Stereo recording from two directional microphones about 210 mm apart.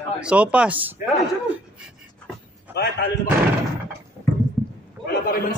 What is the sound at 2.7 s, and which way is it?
Speech, 50° left (ahead or behind).